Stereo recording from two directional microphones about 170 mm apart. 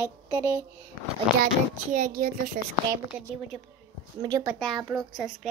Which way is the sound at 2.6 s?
50° right (ahead or behind).